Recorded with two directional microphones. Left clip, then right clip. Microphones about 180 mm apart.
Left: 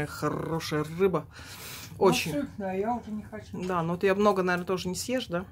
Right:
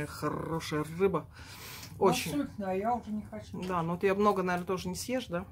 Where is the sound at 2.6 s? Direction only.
60° right (ahead or behind).